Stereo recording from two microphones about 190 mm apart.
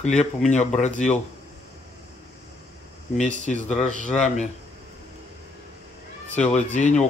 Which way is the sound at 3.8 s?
40° left (ahead or behind).